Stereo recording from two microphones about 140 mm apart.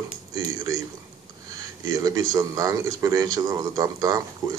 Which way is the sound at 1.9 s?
25° right (ahead or behind).